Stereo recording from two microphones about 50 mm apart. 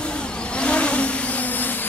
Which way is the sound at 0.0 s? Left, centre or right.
Left.